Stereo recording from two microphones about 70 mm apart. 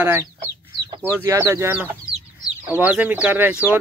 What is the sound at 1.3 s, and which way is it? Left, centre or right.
Speech, right.